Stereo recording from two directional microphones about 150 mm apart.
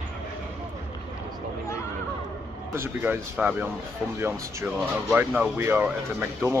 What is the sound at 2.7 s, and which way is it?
Speech, 15° right (ahead or behind).